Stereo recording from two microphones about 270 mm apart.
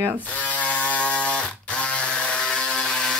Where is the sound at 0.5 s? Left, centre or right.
Centre.